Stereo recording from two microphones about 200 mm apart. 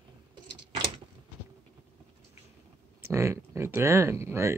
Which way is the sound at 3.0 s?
15° right (ahead or behind).